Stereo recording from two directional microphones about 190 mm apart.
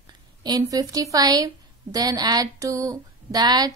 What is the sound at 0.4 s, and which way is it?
A woman's voice, 20° right (ahead or behind).